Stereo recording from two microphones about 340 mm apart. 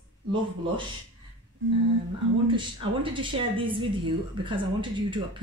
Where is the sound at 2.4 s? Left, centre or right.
Centre.